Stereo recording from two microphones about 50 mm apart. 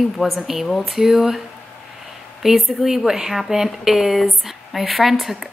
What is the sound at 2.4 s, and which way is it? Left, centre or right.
Speech, centre.